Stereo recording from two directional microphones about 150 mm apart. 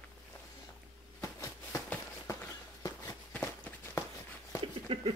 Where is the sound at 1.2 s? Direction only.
20° left (ahead or behind).